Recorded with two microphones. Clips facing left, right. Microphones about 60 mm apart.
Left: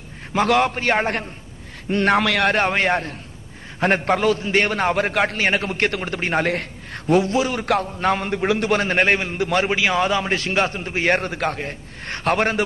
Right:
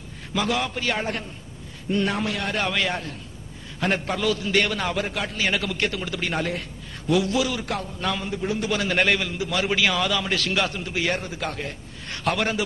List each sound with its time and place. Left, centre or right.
0.3 s a man's voice: left
1.9 s a man's voice: left
2.6 s a man's voice: left
5.0 s a man's voice: left
6.4 s a man's voice: left
7.1 s a man's voice: left
8.7 s a man's voice: left
11.1 s a man's voice: left
12.0 s a man's voice: left